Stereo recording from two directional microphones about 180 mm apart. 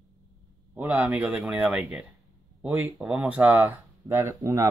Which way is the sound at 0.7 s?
10° right (ahead or behind).